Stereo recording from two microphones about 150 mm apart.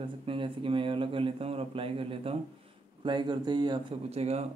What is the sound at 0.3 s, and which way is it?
Speech, 35° right (ahead or behind).